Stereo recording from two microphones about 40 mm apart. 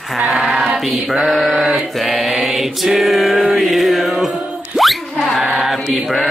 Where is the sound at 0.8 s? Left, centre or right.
Centre.